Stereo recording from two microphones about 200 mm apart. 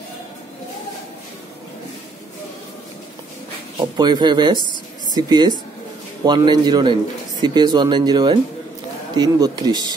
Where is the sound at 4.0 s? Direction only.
20° right (ahead or behind).